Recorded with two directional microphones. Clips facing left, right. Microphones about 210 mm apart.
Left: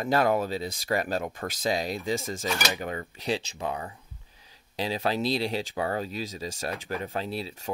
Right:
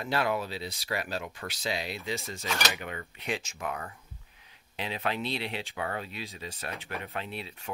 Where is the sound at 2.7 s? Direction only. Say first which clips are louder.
Left 6 dB; 35° left (ahead or behind).